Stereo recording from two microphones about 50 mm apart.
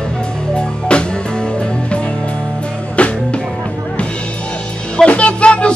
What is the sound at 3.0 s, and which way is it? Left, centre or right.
Music, left.